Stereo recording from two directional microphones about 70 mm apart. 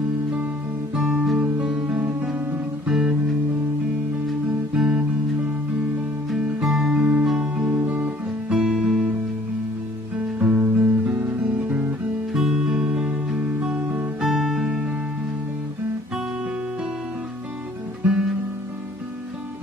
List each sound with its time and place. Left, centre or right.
0.9 s music: centre
4.3 s guitar: centre
6.3 s music: centre
7.0 s music: right
7.8 s guitar: right
8.5 s guitar: centre
10.4 s guitar: right
12.4 s music: centre
18.0 s guitar: centre